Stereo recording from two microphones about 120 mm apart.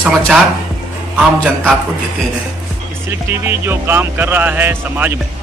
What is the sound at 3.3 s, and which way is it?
Speech, 20° right (ahead or behind).